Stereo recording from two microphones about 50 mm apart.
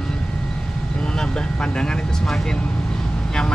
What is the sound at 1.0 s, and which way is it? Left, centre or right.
Speech, centre.